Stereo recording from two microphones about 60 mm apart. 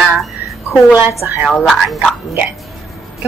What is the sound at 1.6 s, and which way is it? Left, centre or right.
Speech, centre.